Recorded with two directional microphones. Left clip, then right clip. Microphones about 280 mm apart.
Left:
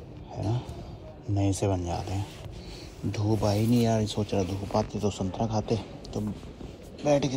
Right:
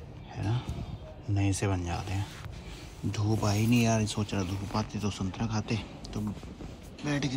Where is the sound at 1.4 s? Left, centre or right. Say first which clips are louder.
Left 4 dB; centre.